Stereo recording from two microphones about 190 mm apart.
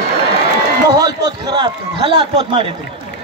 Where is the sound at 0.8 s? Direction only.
20° right (ahead or behind).